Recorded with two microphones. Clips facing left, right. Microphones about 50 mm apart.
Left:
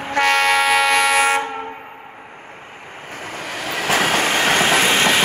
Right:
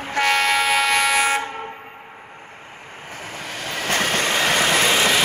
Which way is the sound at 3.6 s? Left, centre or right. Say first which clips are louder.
Left 4 dB; centre.